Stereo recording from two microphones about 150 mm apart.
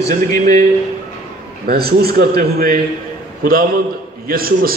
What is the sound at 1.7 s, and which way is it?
A man's voice, 90° right.